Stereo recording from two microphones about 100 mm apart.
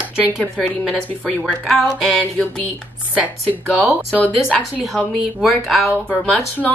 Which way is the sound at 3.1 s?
15° right (ahead or behind).